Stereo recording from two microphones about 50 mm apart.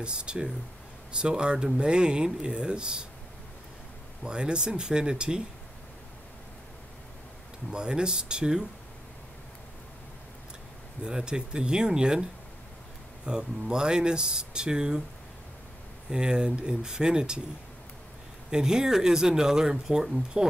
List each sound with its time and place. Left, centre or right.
0.0 s speech: centre
4.2 s speech: centre
7.7 s speech: centre
11.1 s speech: centre
16.1 s speech: centre
18.5 s speech: centre